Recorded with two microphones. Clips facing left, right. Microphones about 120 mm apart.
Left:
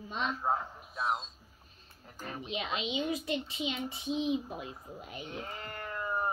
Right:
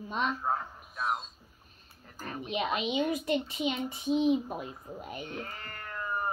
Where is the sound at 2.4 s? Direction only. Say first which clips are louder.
Right 5 dB; 50° right (ahead or behind).